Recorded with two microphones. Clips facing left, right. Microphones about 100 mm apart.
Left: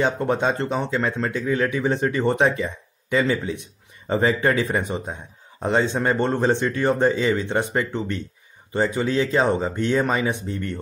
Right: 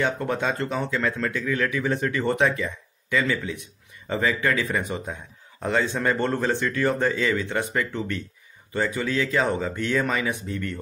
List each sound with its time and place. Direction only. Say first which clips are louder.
0.0 s speech: left 4 dB; 25° left (ahead or behind)